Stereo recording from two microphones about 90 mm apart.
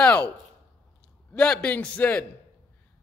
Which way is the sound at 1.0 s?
10° left (ahead or behind).